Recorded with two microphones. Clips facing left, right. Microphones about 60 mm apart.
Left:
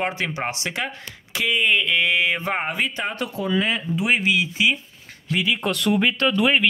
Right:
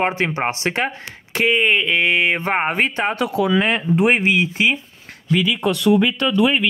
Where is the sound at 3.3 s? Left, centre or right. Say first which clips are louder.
Right 5 dB; right.